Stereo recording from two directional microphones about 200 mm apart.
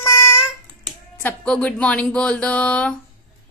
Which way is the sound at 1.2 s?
5° left (ahead or behind).